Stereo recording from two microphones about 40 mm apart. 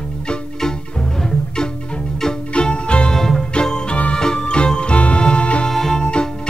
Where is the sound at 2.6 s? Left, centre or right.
Left.